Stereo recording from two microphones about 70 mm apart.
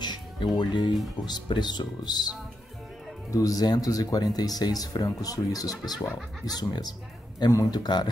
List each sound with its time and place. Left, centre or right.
0.6 s speech: left
3.3 s speech: left
6.4 s a man's voice: left